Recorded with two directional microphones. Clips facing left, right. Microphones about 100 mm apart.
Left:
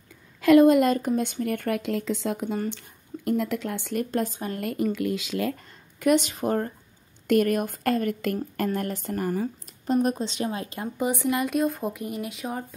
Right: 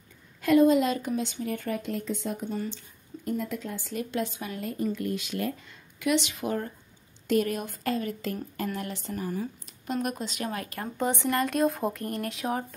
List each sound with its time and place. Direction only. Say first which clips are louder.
0.4 s a sound: left 5 dB; 90° left
0.7 s speech: left 4 dB; 50° left (ahead or behind)
4.6 s speech: left 4 dB; 65° left (ahead or behind); by 5.6 s 90° left
5.9 s speech: left 5 dB; 45° left (ahead or behind)
7.2 s speech: left 5 dB; 55° left (ahead or behind)
8.7 s speech: left 5 dB; 50° left (ahead or behind)
10.0 s speech: left 5 dB; 30° left (ahead or behind)
11.0 s speech: left 1 dB; 10° left (ahead or behind)